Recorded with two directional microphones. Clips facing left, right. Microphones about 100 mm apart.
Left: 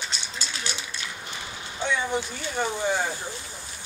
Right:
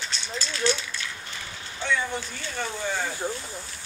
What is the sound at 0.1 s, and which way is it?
Rattle, 20° left (ahead or behind).